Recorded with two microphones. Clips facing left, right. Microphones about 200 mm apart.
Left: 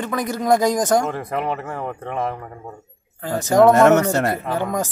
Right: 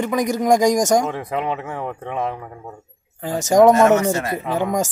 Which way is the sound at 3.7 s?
65° left (ahead or behind).